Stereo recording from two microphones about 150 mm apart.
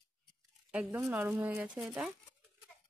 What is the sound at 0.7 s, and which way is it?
Speech, 10° right (ahead or behind).